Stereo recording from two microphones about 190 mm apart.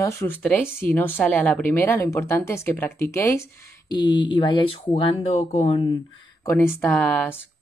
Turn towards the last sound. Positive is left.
turn(degrees=10)  # may be behind; listen again after turning